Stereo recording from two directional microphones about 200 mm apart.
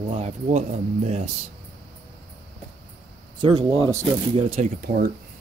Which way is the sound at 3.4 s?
25° right (ahead or behind).